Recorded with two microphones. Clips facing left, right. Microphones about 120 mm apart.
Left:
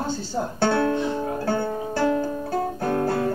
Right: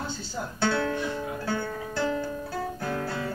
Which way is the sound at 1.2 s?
45° left (ahead or behind).